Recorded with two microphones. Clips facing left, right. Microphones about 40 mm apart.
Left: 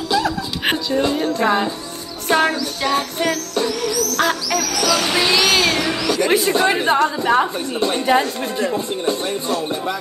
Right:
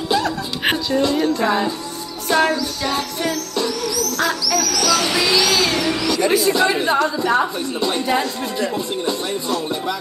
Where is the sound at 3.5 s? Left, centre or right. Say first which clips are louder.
Left 1 dB; left.